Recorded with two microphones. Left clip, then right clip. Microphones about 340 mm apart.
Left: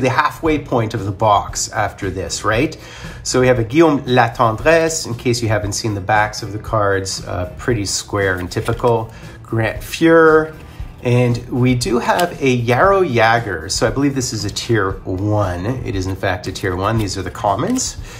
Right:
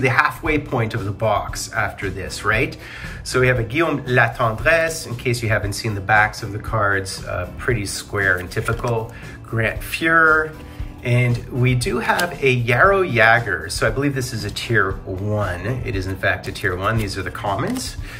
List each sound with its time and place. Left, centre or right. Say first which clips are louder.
0.0 s a man's voice: left 2 dB; centre
9.6 s a man's voice: left 4 dB; centre